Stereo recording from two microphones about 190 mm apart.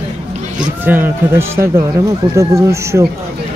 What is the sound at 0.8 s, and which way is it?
Speech, 10° right (ahead or behind).